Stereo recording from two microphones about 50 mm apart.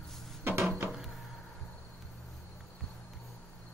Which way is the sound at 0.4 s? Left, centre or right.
Right.